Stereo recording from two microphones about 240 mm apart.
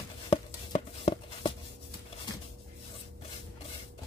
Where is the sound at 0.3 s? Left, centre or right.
Left.